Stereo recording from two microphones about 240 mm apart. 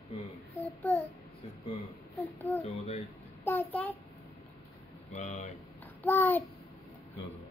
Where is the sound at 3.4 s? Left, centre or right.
Centre.